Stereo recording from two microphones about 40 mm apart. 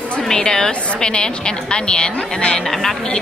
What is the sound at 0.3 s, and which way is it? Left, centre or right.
A woman's voice, centre.